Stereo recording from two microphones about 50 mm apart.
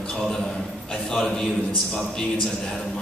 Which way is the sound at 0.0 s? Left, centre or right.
Centre.